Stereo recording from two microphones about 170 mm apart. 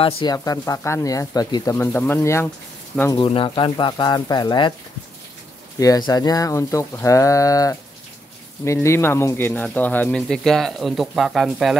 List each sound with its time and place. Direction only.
0.0 s speech: 25° left (ahead or behind)
3.2 s speech: 30° left (ahead or behind)
5.8 s speech: 20° left (ahead or behind); by 11.7 s centre (ahead or behind)